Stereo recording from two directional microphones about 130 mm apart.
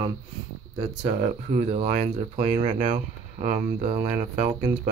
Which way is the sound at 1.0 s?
60° right (ahead or behind).